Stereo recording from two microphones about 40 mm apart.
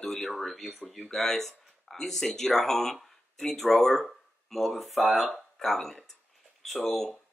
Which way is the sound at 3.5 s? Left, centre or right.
Centre.